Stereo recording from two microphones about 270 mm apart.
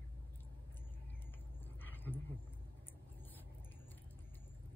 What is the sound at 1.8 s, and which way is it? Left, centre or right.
Dog, centre.